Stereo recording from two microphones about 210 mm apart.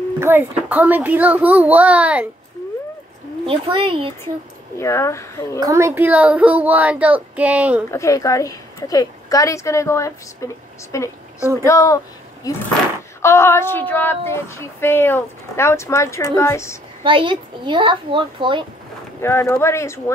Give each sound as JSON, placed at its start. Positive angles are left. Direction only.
{"t": 0.2, "sound": "a child's voice", "side_deg": -10}
{"t": 3.4, "sound": "a child's voice", "side_deg": -25}
{"t": 4.7, "sound": "a woman's voice", "side_deg": 15}
{"t": 5.6, "sound": "a child's voice", "side_deg": -15}
{"t": 7.9, "sound": "a woman's voice", "side_deg": 15}
{"t": 17.0, "sound": "a child's voice", "side_deg": -25}
{"t": 19.2, "sound": "a woman's voice", "side_deg": 15}